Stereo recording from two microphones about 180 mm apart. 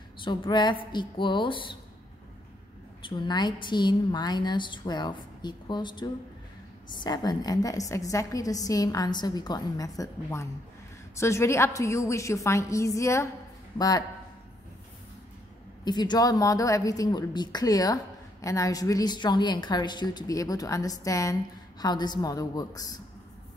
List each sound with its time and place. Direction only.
0.2 s a woman's voice: 25° left (ahead or behind)
3.0 s a woman's voice: 25° left (ahead or behind)
15.8 s a woman's voice: 25° left (ahead or behind)